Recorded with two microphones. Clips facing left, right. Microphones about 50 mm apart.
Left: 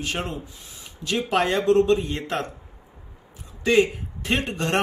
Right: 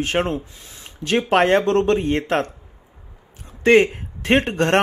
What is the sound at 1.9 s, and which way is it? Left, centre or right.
Speech, right.